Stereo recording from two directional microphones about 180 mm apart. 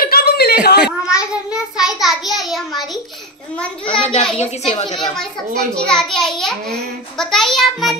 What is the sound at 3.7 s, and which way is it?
A child's voice, 30° left (ahead or behind).